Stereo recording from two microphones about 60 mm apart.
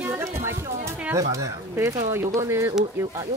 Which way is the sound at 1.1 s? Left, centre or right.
Right.